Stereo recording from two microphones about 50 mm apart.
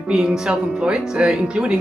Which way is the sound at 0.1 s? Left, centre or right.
Centre.